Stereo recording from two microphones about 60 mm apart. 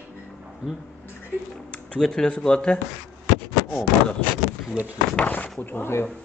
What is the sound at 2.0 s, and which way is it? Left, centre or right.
Speech, centre.